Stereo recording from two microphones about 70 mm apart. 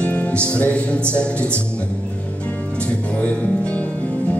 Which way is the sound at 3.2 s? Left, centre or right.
Centre.